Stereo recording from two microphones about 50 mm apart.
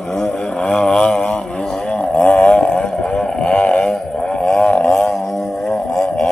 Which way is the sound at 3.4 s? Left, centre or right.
Left.